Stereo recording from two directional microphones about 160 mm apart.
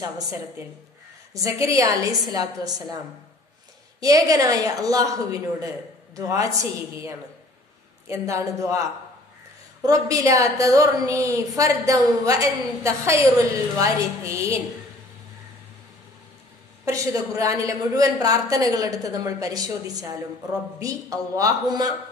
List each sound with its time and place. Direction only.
0.0 s a woman's voice: 20° right (ahead or behind)
4.0 s a woman's voice: 20° right (ahead or behind)
6.1 s a woman's voice: 20° right (ahead or behind)
8.1 s a woman's voice: 20° right (ahead or behind)
9.8 s a woman's voice: 20° right (ahead or behind)
16.8 s a woman's voice: 20° right (ahead or behind)